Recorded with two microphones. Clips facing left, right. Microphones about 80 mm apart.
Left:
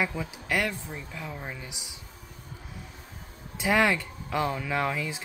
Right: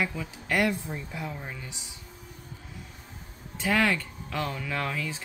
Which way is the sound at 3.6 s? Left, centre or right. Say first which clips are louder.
Left 2 dB; centre.